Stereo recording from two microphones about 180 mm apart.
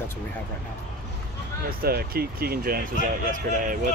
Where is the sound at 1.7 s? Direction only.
55° right (ahead or behind).